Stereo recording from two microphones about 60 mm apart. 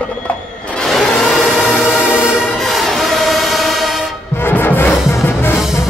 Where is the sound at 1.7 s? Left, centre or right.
Left.